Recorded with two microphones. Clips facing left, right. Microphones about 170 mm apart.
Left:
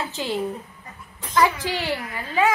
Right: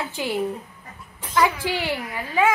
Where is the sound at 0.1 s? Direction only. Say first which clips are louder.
Right 1 dB; 15° right (ahead or behind).